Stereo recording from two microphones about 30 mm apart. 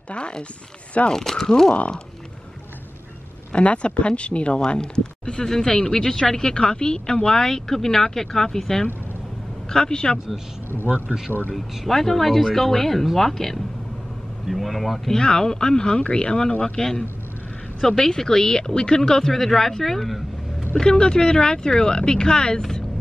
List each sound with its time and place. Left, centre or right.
0.1 s speech: left
1.1 s speech: centre
3.5 s speech: left
5.4 s speech: left
9.7 s speech: left
10.1 s speech: centre
11.5 s speech: centre
15.1 s speech: left
20.8 s speech: left
22.6 s a sound: centre